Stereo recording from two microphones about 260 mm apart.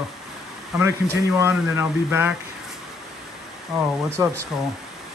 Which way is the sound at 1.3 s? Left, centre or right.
Centre.